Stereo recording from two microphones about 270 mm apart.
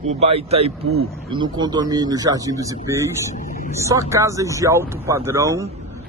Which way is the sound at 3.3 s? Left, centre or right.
Left.